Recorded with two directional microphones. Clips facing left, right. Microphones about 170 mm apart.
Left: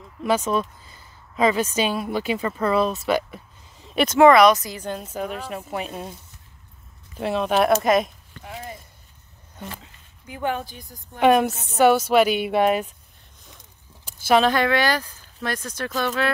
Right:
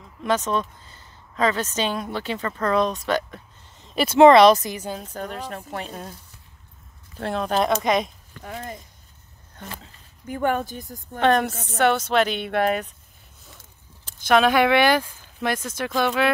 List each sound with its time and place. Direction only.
0.2 s speech: 10° left (ahead or behind)
4.2 s speech: 25° right (ahead or behind)
4.7 s speech: 5° right (ahead or behind)
5.0 s a woman's voice: 5° left (ahead or behind)
7.2 s speech: 5° left (ahead or behind)
10.2 s a woman's voice: 45° right (ahead or behind)
11.1 s a woman's voice: 10° left (ahead or behind)
13.6 s a sound: 10° left (ahead or behind)
14.5 s speech: 10° right (ahead or behind)